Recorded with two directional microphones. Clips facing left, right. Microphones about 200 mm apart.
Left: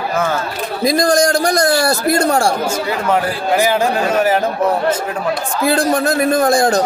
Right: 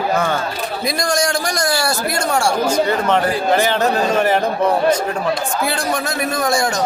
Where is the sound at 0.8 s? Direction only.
35° left (ahead or behind).